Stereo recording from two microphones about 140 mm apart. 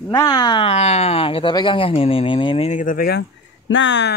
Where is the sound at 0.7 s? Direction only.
50° left (ahead or behind).